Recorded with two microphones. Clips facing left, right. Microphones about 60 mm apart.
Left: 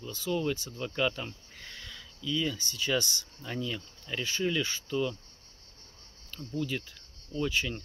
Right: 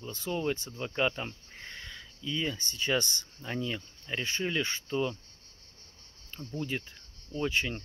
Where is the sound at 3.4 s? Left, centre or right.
Right.